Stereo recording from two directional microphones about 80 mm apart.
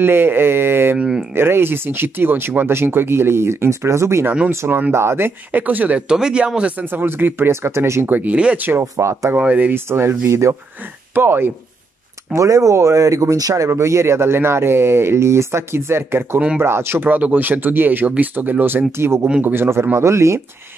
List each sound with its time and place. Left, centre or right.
0.0 s speech: right
0.9 s speech: centre
1.3 s speech: right
6.9 s speech: right
9.0 s speech: right
9.4 s speech: centre
9.8 s speech: right
12.3 s speech: right